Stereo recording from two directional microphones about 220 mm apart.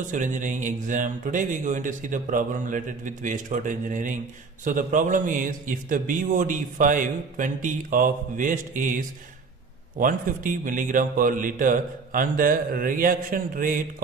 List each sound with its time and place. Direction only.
0.1 s a man's voice: 35° right (ahead or behind)